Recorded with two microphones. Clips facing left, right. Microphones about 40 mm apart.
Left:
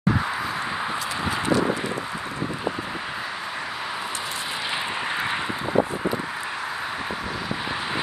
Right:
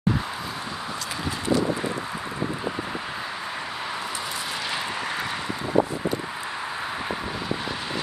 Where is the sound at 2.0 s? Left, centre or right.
Centre.